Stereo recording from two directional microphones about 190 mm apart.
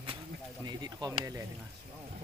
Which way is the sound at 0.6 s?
20° right (ahead or behind).